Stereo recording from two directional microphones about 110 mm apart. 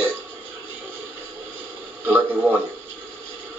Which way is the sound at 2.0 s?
15° right (ahead or behind).